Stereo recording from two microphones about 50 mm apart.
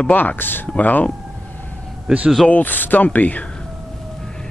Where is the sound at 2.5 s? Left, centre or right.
Left.